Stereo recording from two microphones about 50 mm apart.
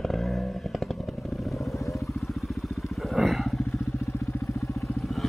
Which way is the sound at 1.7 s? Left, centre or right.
Left.